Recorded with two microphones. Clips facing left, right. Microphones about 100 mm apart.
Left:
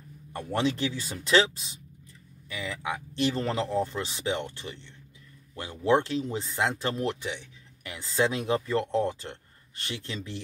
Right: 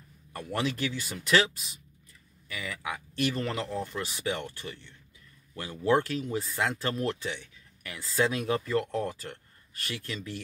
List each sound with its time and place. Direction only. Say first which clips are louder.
0.3 s speech: left 4 dB; 25° left (ahead or behind)